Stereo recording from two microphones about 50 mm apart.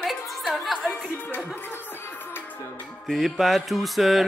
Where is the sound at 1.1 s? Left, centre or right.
Left.